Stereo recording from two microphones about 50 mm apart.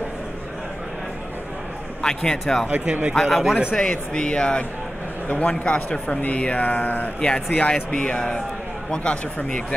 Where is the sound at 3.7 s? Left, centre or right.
Centre; by 7.1 s left.